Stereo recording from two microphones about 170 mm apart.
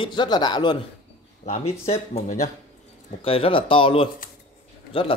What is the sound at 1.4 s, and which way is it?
Speech, 35° left (ahead or behind).